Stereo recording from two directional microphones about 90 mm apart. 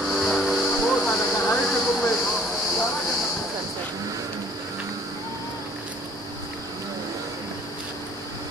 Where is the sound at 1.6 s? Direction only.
Centre (ahead or behind).